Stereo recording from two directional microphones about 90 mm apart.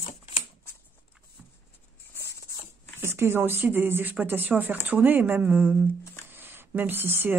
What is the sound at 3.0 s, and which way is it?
Speech, 25° right (ahead or behind).